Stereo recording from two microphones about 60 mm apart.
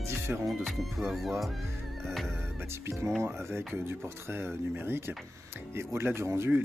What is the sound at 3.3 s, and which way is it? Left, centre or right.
Speech, right.